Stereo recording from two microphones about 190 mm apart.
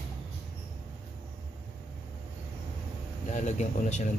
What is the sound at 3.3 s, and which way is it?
Speech, 40° left (ahead or behind).